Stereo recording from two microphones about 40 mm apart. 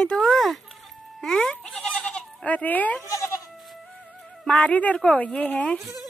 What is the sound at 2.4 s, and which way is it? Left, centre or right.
Speech, left.